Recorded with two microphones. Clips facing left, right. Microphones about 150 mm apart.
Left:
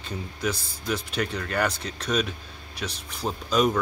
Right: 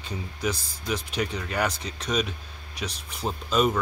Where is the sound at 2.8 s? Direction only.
5° left (ahead or behind).